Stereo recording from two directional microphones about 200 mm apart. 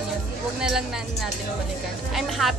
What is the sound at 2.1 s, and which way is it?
Speech, centre (ahead or behind).